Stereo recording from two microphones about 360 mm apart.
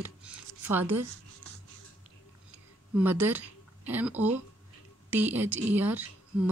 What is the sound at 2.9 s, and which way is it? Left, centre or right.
Speech, centre.